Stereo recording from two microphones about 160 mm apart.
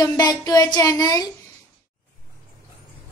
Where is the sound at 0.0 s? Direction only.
25° left (ahead or behind).